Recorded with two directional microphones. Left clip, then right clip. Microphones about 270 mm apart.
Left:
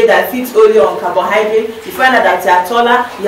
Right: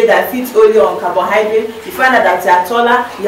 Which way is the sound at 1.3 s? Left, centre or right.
Centre.